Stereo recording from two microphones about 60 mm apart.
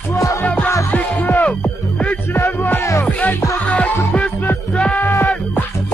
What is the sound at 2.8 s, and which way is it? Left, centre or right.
Music, left.